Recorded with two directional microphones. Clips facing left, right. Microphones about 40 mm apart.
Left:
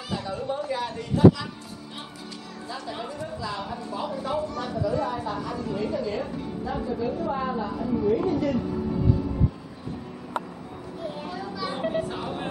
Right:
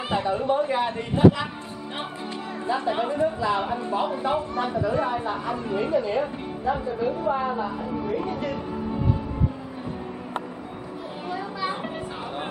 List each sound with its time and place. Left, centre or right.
0.1 s speech: right
2.7 s speech: right
11.7 s a sound: centre